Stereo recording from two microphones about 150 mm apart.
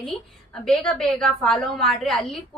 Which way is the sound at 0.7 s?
5° left (ahead or behind).